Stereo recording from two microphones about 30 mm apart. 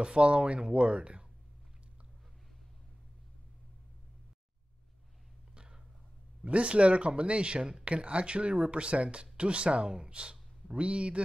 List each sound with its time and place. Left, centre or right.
0.0 s speech: right
5.5 s a sound: right
6.4 s speech: right
9.8 s speech: right
10.8 s speech: right